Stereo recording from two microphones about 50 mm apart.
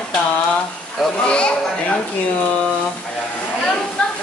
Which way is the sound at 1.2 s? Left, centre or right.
Left.